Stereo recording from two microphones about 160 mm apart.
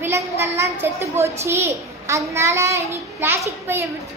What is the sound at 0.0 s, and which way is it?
A child's voice, 15° right (ahead or behind).